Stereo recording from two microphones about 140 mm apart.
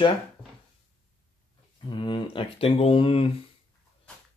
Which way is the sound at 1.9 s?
35° left (ahead or behind).